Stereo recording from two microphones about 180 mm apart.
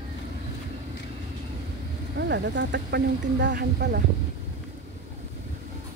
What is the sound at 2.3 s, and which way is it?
Speech, 80° right.